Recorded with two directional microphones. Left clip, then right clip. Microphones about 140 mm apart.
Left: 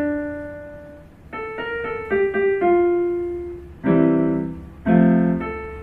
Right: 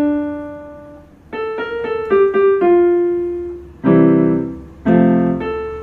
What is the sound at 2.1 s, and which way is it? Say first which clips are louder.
Piano: right 7 dB; 30° right (ahead or behind).